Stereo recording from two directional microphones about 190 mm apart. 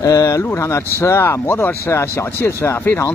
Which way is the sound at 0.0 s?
20° left (ahead or behind).